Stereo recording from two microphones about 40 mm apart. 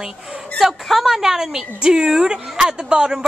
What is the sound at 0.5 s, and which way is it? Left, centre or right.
A woman's voice, centre.